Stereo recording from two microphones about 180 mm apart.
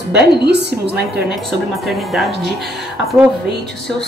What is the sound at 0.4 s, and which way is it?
Speech, 65° right (ahead or behind).